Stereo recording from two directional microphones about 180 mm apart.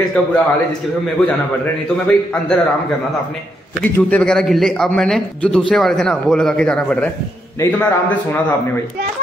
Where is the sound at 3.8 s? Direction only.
5° left (ahead or behind).